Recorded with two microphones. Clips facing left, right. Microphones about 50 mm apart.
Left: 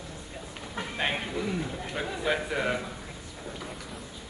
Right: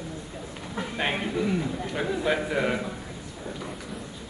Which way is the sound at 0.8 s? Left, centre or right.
Centre.